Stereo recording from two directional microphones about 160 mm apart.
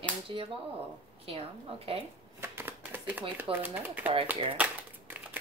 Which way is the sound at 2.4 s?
15° right (ahead or behind).